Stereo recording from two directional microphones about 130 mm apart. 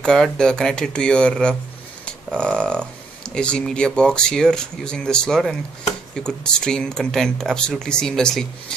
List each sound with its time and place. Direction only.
0.0 s speech: 5° left (ahead or behind)